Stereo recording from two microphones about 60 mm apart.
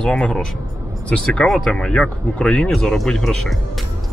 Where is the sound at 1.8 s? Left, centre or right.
Centre.